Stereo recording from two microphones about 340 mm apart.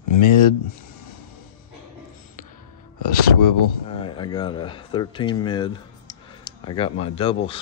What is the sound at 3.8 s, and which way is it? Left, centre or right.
Speech, centre.